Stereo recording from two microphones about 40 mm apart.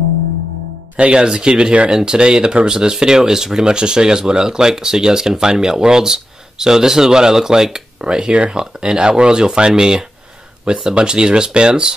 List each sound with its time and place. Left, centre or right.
1.1 s speech: right